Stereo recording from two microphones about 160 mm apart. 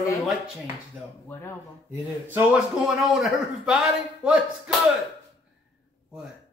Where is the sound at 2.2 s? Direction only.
10° right (ahead or behind).